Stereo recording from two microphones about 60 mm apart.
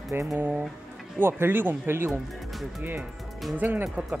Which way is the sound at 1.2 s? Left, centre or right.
Right.